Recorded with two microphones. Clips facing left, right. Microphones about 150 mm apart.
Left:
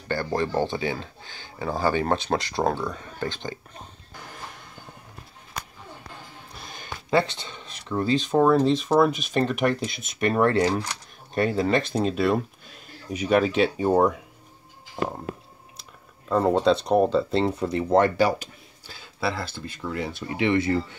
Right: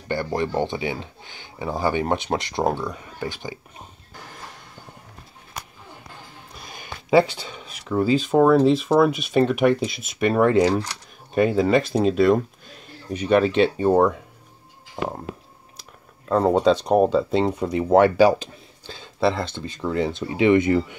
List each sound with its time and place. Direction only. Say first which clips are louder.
0.1 s speech: right 1 dB; 20° right (ahead or behind)
6.7 s speech: right 5 dB; 10° right (ahead or behind)
10.6 s speech: right 4 dB; 5° left (ahead or behind)
11.3 s speech: right 4 dB; 5° right (ahead or behind)
16.4 s speech: right 3 dB; 10° right (ahead or behind)
18.9 s a sound: right 7 dB; 25° right (ahead or behind)
19.5 s speech: right 6 dB; 25° right (ahead or behind)